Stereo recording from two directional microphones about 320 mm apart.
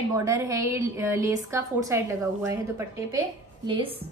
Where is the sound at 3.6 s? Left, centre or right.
Centre.